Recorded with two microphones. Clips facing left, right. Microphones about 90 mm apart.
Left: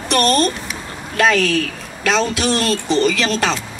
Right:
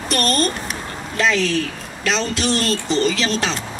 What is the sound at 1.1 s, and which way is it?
Speech, 55° left (ahead or behind).